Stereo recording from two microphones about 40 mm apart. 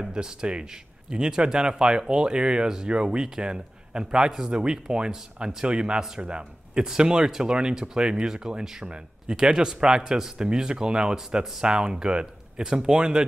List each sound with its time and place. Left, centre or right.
0.1 s speech: centre